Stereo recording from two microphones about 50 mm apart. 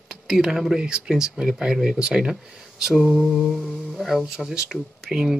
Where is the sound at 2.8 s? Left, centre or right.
Centre.